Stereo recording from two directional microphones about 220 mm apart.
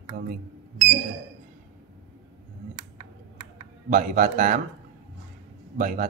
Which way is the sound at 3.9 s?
40° right (ahead or behind).